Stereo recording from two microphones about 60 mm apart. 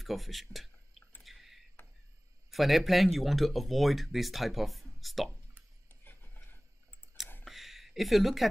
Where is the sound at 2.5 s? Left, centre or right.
Centre.